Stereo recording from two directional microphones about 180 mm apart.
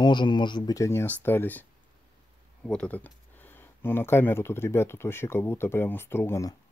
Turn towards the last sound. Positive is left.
turn(degrees=15)  # may be behind; listen again after turning